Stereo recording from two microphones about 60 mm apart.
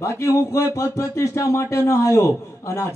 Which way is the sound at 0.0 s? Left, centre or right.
Left.